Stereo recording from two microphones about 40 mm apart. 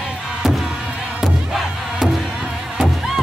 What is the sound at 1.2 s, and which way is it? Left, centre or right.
Music, centre.